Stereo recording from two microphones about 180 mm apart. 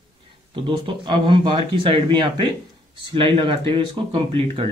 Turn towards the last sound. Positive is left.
turn(degrees=-30)  # may be behind; listen again after turning